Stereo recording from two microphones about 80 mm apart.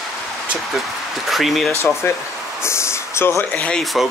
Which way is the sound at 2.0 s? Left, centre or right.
Left.